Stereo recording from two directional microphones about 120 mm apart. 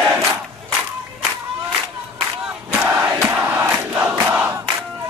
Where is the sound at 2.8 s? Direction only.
20° right (ahead or behind).